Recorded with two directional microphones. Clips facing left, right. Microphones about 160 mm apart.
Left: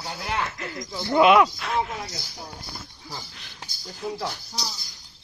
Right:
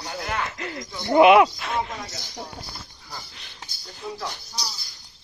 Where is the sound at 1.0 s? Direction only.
20° right (ahead or behind).